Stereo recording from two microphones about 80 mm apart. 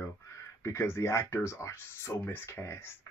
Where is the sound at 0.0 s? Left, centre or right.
Left.